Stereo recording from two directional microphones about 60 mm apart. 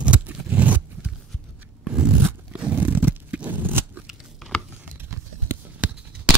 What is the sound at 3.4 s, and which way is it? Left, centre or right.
Biting, right.